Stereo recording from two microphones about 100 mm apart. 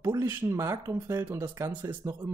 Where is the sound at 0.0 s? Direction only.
25° right (ahead or behind).